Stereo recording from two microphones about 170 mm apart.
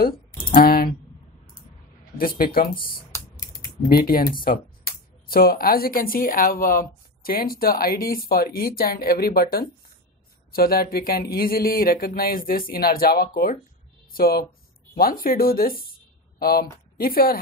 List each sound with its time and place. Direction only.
0.0 s typing: 55° left (ahead or behind)
2.1 s speech: 55° left (ahead or behind)
3.1 s typing: 20° left (ahead or behind)
3.9 s speech: 60° left (ahead or behind)
5.3 s a woman's voice: 60° left (ahead or behind)